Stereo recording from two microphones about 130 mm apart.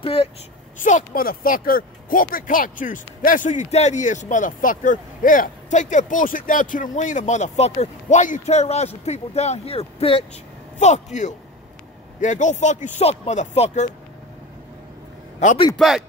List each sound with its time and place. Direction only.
0.0 s speech: 45° left (ahead or behind)
0.8 s speech: 80° left; by 10.2 s 45° left (ahead or behind)
10.8 s speech: 65° left (ahead or behind)
15.7 s a man's voice: centre (ahead or behind)